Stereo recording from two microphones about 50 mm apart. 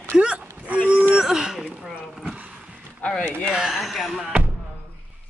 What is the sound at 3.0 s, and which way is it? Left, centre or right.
Speech, left.